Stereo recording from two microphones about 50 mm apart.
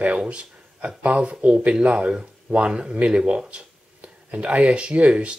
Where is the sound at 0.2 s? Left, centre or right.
Right.